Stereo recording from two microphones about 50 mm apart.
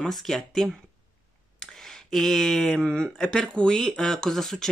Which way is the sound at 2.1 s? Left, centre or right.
Centre.